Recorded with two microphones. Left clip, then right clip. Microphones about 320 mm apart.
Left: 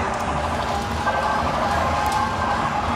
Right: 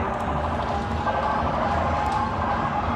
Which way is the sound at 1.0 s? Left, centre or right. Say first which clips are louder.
Left 3 dB; centre.